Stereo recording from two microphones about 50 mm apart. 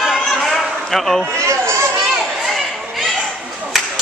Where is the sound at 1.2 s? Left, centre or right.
Right.